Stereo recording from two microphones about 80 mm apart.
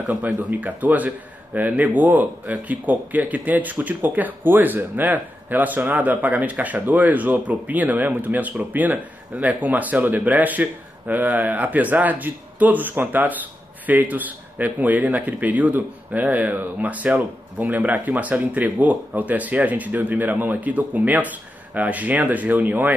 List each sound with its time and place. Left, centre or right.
0.0 s speech: centre